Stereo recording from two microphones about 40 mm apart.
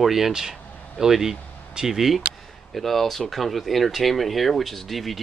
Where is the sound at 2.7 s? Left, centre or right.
Centre.